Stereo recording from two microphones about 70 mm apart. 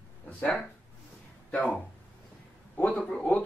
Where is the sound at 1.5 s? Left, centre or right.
Centre.